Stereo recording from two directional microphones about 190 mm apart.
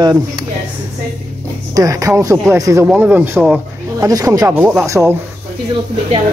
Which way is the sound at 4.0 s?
20° right (ahead or behind).